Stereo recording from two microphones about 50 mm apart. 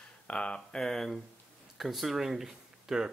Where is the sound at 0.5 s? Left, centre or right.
Centre.